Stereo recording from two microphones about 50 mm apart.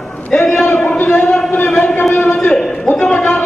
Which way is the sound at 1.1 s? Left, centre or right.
Centre.